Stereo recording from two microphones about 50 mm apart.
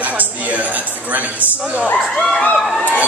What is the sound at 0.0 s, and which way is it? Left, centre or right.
Music, right.